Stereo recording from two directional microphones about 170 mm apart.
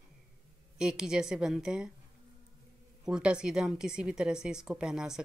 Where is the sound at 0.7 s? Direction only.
5° right (ahead or behind).